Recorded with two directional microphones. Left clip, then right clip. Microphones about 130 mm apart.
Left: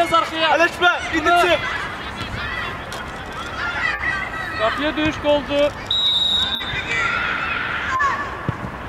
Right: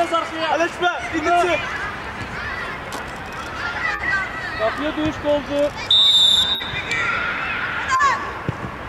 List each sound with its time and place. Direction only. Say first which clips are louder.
0.1 s speech: left 4 dB; 40° left (ahead or behind)
4.6 s speech: left 2 dB; 35° left (ahead or behind)
5.9 s smoke detector: right 5 dB; 15° right (ahead or behind)
7.9 s honk: right 3 dB; 20° right (ahead or behind)